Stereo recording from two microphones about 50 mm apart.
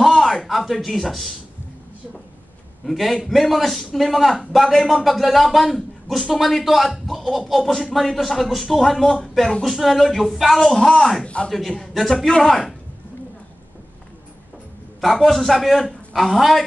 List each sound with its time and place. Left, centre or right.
0.0 s a sound: centre
0.5 s speech: centre
2.8 s a man's voice: centre
11.2 s a man's voice: left
11.9 s a man's voice: centre
15.0 s a man's voice: centre